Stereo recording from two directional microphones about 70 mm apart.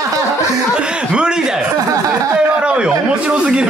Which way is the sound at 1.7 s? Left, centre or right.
Right.